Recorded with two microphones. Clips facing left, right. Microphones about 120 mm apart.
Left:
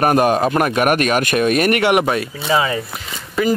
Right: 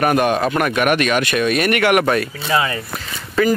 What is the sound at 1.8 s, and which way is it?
Speech, 20° left (ahead or behind).